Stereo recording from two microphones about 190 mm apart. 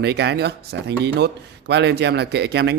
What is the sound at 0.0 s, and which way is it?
Speech, 65° right (ahead or behind).